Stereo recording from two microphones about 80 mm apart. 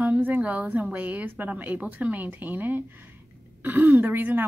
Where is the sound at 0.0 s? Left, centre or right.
Right.